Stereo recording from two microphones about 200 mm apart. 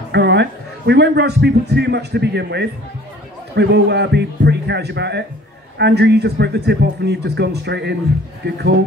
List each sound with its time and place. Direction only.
0.1 s a man's voice: 60° right (ahead or behind)